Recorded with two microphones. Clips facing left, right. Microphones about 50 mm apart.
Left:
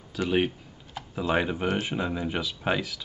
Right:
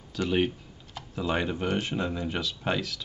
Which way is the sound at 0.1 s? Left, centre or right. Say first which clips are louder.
Left 1 dB; centre.